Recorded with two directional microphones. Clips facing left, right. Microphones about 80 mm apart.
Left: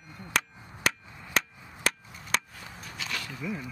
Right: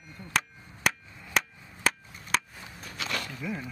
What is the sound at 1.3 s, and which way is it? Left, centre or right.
Chop, centre.